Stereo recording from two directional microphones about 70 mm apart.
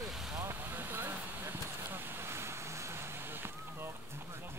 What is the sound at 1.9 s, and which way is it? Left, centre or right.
Vehicle, right.